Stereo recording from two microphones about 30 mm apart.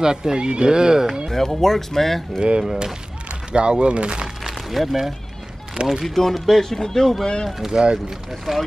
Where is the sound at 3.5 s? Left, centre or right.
Right.